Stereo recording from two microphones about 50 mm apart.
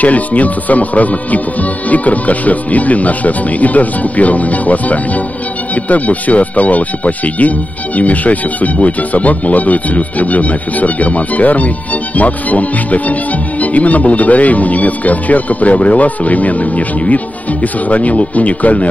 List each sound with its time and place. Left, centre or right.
0.0 s speech: left